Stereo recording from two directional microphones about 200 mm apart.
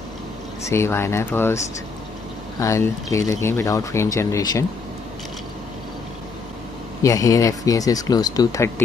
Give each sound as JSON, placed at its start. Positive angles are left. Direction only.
{"t": 0.7, "sound": "speech", "side_deg": 10}
{"t": 2.6, "sound": "speech", "side_deg": 15}
{"t": 7.0, "sound": "speech", "side_deg": 15}